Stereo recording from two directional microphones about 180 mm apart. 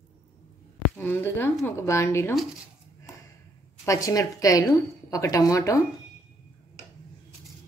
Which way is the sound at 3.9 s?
20° left (ahead or behind).